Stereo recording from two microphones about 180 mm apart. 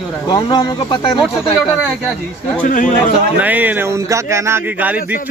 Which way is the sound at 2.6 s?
45° left (ahead or behind).